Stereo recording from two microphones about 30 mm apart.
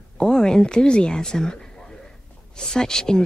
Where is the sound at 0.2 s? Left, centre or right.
Left.